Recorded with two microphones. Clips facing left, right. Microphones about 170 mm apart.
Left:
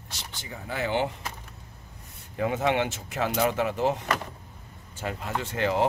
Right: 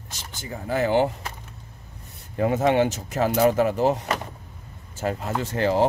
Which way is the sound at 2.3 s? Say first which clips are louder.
Right 5 dB; 40° right (ahead or behind).